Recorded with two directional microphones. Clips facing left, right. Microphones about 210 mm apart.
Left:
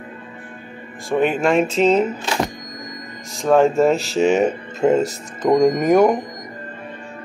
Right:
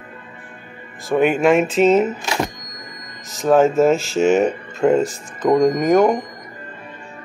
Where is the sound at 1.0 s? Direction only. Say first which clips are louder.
Right 3 dB; 5° right (ahead or behind).